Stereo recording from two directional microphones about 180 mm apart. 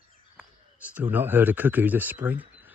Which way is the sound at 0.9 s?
10° right (ahead or behind).